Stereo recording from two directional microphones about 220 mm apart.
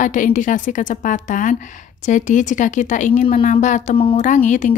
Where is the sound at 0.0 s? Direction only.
35° left (ahead or behind).